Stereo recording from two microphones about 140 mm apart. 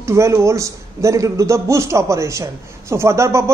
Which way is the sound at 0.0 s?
20° right (ahead or behind).